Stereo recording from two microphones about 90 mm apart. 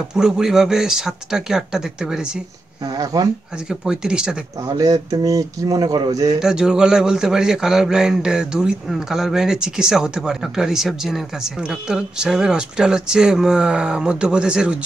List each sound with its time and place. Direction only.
0.1 s speech: 5° right (ahead or behind)
2.9 s speech: 45° right (ahead or behind)
3.6 s a man's voice: 5° right (ahead or behind)
4.7 s speech: 45° right (ahead or behind)
6.4 s a man's voice: 5° right (ahead or behind)